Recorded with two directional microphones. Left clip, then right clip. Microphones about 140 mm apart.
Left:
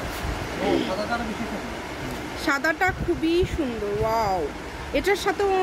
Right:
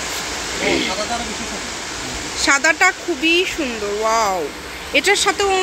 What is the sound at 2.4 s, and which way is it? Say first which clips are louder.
Speech: right 8 dB; 10° right (ahead or behind).